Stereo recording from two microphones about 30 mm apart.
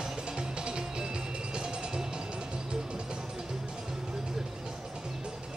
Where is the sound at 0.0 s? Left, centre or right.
Right.